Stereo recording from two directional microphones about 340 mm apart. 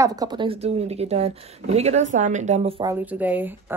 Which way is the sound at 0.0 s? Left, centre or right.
Centre.